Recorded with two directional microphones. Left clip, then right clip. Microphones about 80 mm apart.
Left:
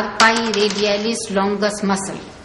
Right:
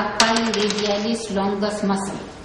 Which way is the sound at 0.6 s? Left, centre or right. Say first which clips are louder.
Left 4 dB; left.